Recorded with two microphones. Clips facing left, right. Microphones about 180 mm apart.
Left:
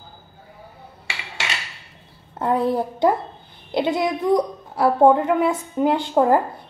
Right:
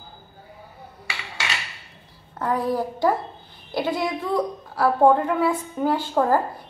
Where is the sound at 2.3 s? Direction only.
25° left (ahead or behind).